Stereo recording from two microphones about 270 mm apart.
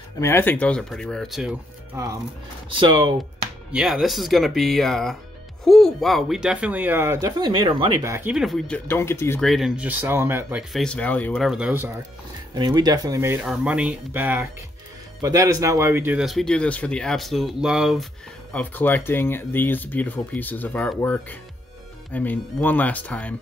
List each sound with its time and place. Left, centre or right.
0.2 s speech: centre
3.7 s speech: centre
12.5 s speech: centre